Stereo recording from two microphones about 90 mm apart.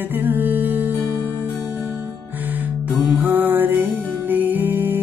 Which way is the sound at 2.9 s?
20° right (ahead or behind).